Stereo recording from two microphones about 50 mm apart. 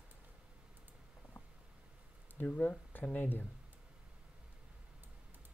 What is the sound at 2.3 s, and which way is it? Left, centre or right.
Speech, left.